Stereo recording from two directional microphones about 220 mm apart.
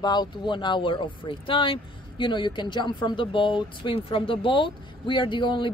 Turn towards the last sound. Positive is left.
turn(degrees=20)  # may be behind; listen again after turning